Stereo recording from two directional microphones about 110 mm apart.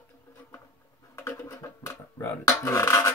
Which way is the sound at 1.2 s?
30° left (ahead or behind).